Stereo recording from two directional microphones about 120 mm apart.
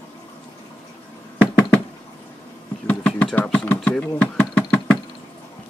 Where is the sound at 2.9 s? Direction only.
15° left (ahead or behind).